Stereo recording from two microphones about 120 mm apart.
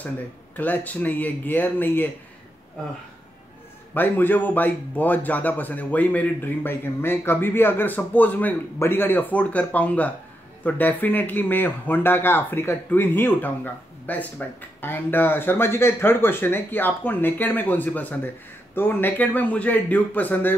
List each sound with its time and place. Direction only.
0.6 s a man's voice: 15° left (ahead or behind)
3.9 s a man's voice: 15° left (ahead or behind)